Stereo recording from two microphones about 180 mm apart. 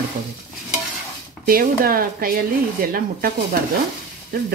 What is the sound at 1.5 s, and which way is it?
Speech, 55° right (ahead or behind).